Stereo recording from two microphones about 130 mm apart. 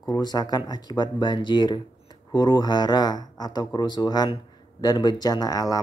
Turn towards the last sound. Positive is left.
turn(degrees=30)  # may be behind; listen again after turning